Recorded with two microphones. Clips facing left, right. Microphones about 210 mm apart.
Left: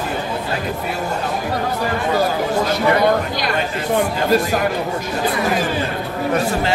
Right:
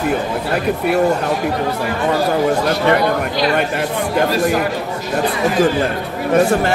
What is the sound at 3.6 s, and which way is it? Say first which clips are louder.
Speech: even; 65° right (ahead or behind).